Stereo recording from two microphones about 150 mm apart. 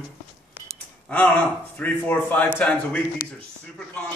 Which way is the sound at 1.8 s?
10° left (ahead or behind).